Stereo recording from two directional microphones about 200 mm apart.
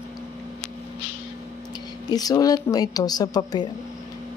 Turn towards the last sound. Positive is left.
turn(degrees=20)  # may be behind; listen again after turning